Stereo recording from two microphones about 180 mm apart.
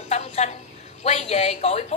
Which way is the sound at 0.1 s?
40° left (ahead or behind).